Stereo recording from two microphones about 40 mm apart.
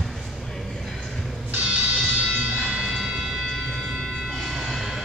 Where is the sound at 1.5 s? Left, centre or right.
Right.